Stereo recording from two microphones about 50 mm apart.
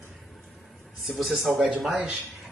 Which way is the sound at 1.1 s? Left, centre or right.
Centre.